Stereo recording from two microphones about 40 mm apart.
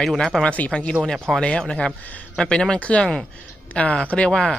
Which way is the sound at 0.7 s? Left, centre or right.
Centre.